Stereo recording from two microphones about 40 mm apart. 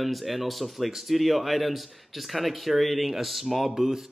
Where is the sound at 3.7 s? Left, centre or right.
Centre.